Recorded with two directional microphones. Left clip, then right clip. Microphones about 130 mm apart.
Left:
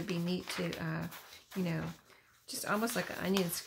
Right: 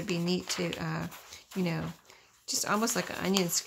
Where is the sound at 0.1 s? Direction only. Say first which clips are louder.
Right 7 dB; 40° right (ahead or behind).